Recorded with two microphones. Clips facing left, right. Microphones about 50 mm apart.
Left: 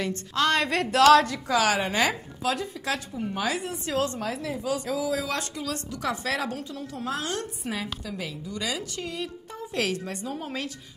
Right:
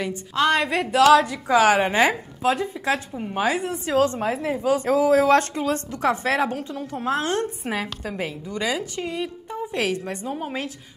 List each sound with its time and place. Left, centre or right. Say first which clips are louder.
0.0 s a woman's voice: right 3 dB; centre
1.5 s a woman's voice: right 7 dB; right